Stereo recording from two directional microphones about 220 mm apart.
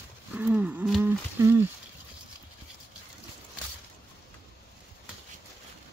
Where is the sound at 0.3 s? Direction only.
5° right (ahead or behind).